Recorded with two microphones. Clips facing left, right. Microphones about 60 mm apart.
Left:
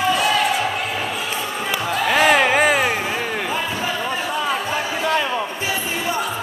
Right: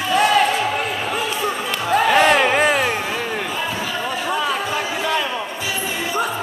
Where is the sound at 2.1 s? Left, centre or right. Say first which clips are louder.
Left 1 dB; centre.